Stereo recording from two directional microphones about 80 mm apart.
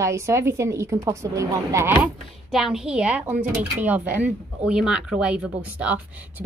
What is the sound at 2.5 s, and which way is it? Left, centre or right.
A woman's voice, centre.